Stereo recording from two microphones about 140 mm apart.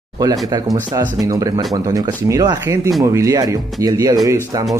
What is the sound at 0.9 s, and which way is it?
Speech, 25° right (ahead or behind).